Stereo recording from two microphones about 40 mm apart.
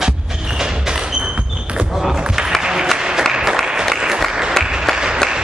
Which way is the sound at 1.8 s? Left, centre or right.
Centre.